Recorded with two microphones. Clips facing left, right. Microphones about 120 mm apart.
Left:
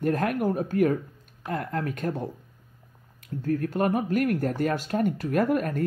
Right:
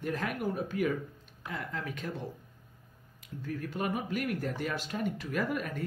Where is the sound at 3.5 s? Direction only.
50° left (ahead or behind).